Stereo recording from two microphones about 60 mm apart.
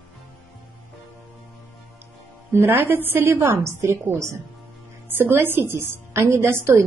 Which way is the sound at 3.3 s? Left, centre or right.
Right.